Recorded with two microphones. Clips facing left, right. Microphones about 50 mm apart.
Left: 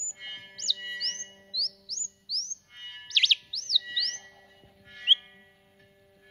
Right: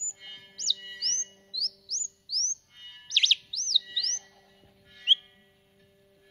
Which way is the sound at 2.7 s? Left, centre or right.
Left.